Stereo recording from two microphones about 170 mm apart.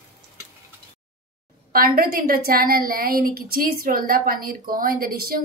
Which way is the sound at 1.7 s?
60° right (ahead or behind).